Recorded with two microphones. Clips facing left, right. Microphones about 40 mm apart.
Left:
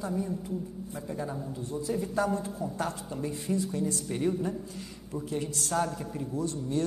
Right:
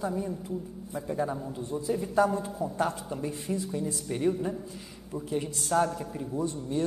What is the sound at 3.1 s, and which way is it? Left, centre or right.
A man's voice, centre.